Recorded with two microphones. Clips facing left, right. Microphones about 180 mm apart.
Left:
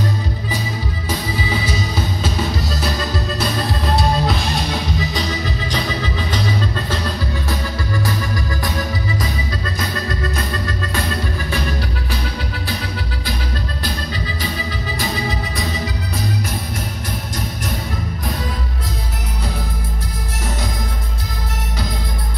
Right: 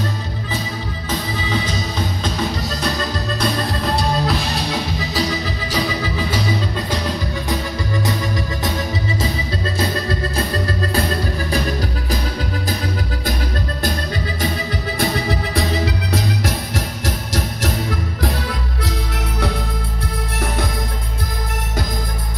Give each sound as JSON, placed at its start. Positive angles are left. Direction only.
{"t": 1.5, "sound": "music", "side_deg": 10}
{"t": 3.3, "sound": "music", "side_deg": 0}
{"t": 5.7, "sound": "music", "side_deg": -10}
{"t": 15.5, "sound": "music", "side_deg": -70}